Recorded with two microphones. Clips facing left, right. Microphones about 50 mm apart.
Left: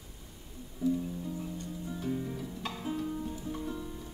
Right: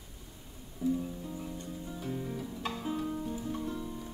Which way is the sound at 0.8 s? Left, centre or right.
Centre.